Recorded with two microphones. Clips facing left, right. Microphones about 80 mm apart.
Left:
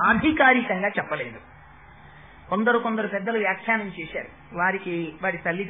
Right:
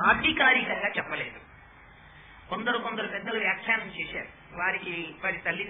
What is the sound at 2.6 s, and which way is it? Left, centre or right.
Speech, left.